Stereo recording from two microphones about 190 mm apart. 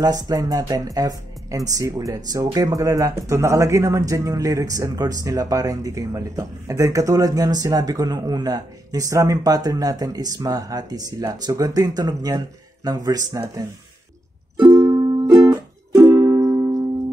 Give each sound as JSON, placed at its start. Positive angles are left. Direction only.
{"t": 0.0, "sound": "speech", "side_deg": -20}
{"t": 14.6, "sound": "music", "side_deg": -15}